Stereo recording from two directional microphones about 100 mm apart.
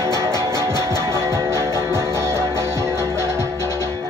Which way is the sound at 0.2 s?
30° right (ahead or behind).